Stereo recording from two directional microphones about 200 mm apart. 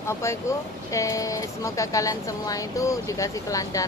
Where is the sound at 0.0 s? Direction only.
15° left (ahead or behind).